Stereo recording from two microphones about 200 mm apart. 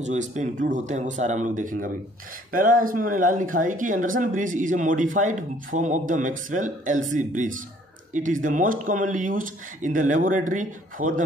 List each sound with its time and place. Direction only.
0.0 s speech: 35° right (ahead or behind)